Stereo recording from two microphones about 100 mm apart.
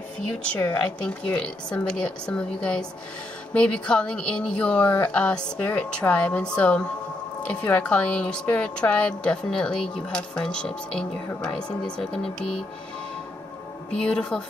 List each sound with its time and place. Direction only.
0.6 s speech: 25° left (ahead or behind)
1.0 s speech: 10° left (ahead or behind)
14.0 s speech: 5° left (ahead or behind)